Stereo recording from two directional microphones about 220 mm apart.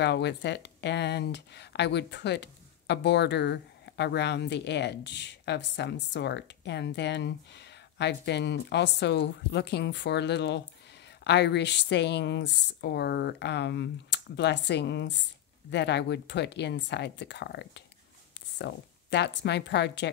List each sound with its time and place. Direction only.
0.0 s speech: 50° left (ahead or behind)